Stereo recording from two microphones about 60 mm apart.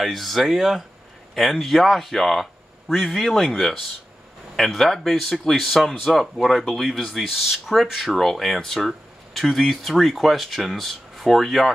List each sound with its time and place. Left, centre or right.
0.0 s speech: centre